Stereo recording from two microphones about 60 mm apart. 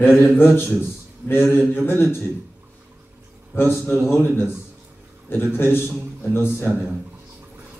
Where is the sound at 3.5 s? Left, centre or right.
Left.